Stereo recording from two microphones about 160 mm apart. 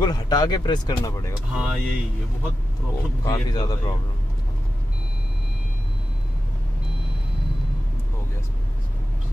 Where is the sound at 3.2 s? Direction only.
25° left (ahead or behind).